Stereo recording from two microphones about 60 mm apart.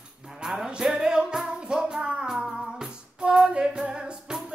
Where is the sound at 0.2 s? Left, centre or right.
Centre.